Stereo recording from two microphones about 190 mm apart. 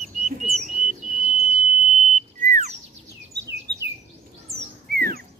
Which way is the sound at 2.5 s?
35° right (ahead or behind).